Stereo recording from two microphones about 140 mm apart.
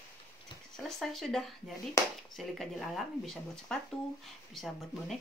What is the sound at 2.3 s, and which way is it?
Speech, centre (ahead or behind).